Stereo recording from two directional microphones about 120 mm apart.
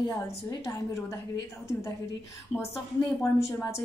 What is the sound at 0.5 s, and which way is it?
A woman's voice, 30° left (ahead or behind).